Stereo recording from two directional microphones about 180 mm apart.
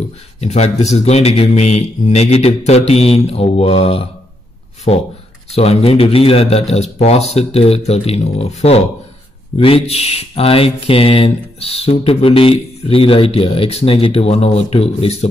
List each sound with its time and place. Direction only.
0.4 s speech: 35° left (ahead or behind)
5.5 s speech: 35° left (ahead or behind)